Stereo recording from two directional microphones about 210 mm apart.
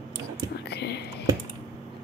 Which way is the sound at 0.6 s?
50° left (ahead or behind).